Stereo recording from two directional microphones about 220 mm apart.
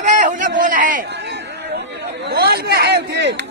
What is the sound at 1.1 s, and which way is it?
Chatter, 50° right (ahead or behind).